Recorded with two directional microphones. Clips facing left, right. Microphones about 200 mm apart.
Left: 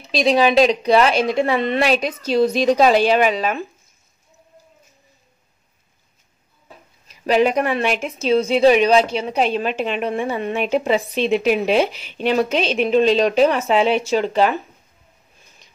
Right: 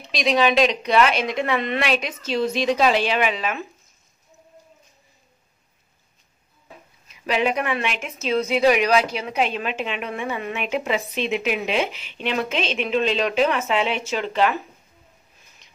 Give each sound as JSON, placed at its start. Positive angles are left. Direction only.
{"t": 0.1, "sound": "a woman's voice", "side_deg": 30}
{"t": 7.1, "sound": "a woman's voice", "side_deg": 40}